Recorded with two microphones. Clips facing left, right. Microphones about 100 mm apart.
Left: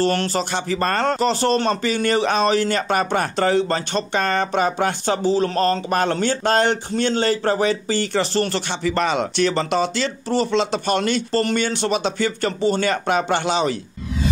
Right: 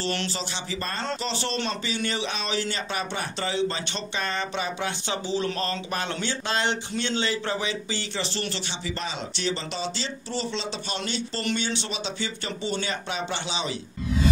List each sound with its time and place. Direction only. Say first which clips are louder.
0.0 s speech: left 10 dB; 45° left (ahead or behind)